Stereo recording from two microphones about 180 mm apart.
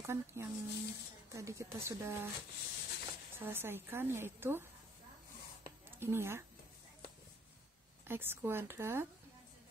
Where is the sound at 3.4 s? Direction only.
10° right (ahead or behind).